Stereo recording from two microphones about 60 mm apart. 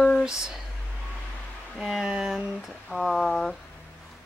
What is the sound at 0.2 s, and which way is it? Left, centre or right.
Speech, centre.